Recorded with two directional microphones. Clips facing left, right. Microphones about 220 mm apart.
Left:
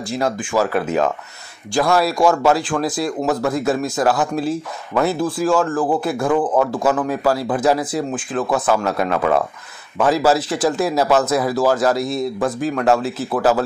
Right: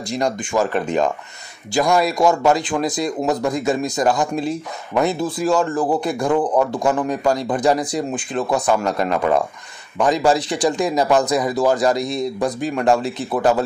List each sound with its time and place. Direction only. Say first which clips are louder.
0.1 s speech: even; centre (ahead or behind)
3.1 s speech: even; 15° right (ahead or behind)
3.5 s speech: left 1 dB; 5° left (ahead or behind)